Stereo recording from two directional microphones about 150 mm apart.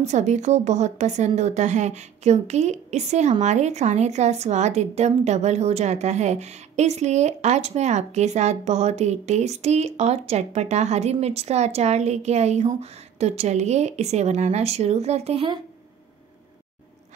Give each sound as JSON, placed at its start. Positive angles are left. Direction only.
{"t": 0.0, "sound": "speech", "side_deg": -50}